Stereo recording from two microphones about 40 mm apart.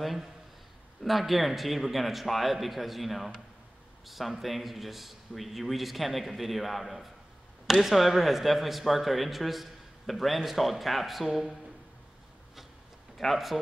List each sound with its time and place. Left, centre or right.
0.0 s a man's voice: centre
13.2 s a man's voice: centre